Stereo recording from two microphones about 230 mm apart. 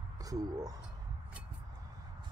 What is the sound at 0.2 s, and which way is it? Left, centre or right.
Speech, centre.